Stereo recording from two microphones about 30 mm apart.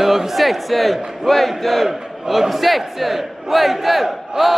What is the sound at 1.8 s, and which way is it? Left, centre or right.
A man's voice, centre.